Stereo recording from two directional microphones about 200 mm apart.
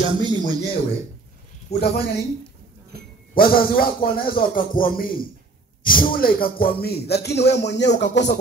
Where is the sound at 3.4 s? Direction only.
45° left (ahead or behind).